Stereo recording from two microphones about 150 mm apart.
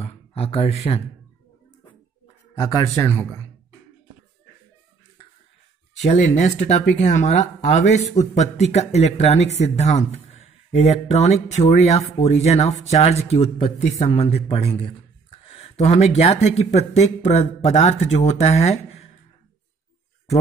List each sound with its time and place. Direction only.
0.0 s speech: 40° left (ahead or behind)
2.5 s speech: 25° left (ahead or behind)
5.9 s speech: 50° left (ahead or behind)